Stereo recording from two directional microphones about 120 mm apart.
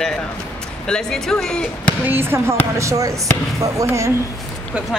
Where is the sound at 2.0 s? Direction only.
20° right (ahead or behind).